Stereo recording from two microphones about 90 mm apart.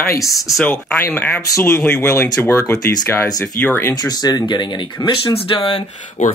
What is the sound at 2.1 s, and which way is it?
Speech, 25° left (ahead or behind).